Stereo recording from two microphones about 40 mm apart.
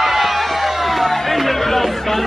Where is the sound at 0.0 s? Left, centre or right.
Centre.